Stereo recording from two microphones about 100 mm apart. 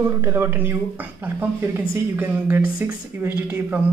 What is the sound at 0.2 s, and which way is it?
Speech, 25° right (ahead or behind).